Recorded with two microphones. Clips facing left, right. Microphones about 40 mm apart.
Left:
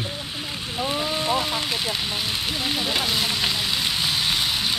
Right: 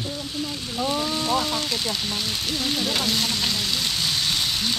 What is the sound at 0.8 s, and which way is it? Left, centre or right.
Rain on surface, left.